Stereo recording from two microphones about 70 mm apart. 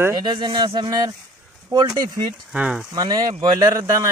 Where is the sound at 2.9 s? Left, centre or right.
Right.